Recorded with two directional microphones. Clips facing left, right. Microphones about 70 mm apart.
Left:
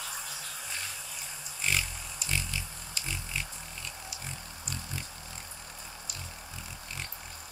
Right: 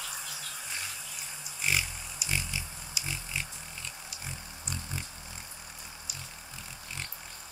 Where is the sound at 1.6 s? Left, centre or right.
Centre.